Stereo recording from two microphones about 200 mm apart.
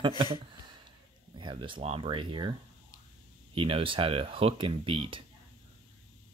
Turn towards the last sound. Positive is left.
turn(degrees=-25)  # may be behind; listen again after turning